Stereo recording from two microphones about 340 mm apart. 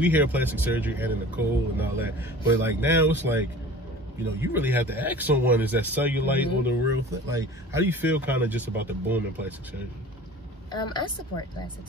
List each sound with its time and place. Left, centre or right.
0.0 s speech: centre
10.7 s a woman's voice: centre